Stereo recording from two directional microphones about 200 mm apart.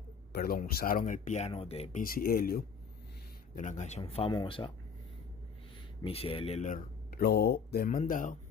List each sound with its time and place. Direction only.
0.3 s speech: 50° left (ahead or behind)
3.5 s speech: 35° left (ahead or behind)
6.0 s speech: 30° left (ahead or behind)